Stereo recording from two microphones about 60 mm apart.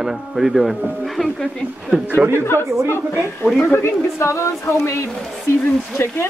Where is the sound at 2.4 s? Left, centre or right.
Left.